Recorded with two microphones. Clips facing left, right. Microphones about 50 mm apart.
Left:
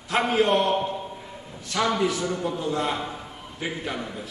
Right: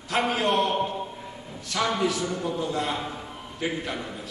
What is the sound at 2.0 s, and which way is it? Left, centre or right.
Speech, left.